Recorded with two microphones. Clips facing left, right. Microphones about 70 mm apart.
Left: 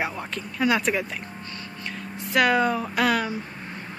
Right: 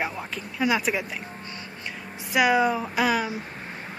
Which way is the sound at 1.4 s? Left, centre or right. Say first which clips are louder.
Left 1 dB; right.